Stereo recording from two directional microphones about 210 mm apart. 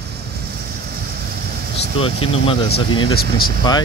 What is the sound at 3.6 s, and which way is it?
Speech, 20° left (ahead or behind).